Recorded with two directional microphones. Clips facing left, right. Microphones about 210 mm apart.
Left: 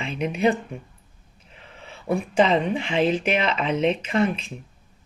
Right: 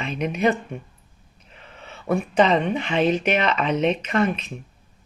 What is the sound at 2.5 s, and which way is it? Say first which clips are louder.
Speech: right 1 dB; 30° left (ahead or behind).